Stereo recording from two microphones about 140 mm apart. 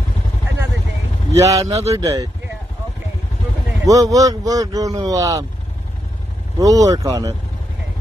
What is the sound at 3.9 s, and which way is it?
Speech, 25° right (ahead or behind).